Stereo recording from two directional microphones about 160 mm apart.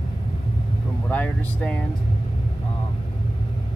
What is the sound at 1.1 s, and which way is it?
Speech, 10° left (ahead or behind).